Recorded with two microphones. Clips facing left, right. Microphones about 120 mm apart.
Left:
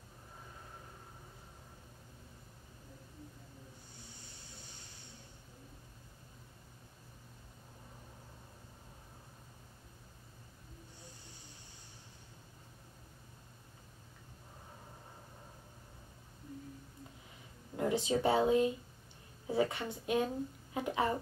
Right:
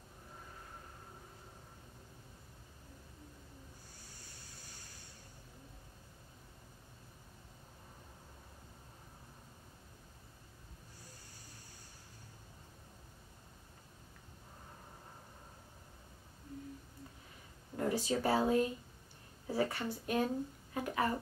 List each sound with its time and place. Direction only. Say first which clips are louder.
17.7 s a woman's voice: left 2 dB; 20° left (ahead or behind)